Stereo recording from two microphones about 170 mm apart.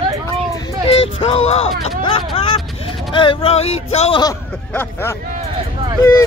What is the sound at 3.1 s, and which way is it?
Speech, 30° left (ahead or behind).